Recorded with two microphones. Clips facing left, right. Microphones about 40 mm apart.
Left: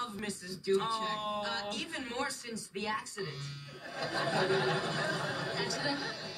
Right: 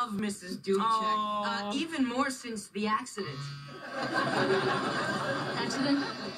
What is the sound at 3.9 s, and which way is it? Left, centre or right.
Speech, right.